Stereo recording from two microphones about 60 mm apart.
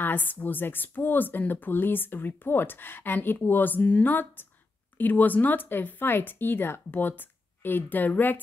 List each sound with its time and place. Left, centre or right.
0.0 s speech: left